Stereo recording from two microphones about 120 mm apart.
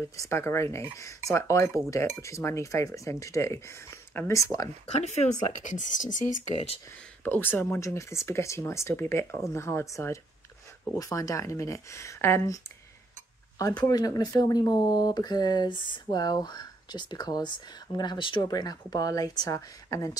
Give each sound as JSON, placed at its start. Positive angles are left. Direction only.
{"t": 0.2, "sound": "speech", "side_deg": 25}
{"t": 4.4, "sound": "speech", "side_deg": 30}
{"t": 4.9, "sound": "speech", "side_deg": 70}
{"t": 6.2, "sound": "speech", "side_deg": -50}
{"t": 7.2, "sound": "speech", "side_deg": 15}
{"t": 13.6, "sound": "speech", "side_deg": 30}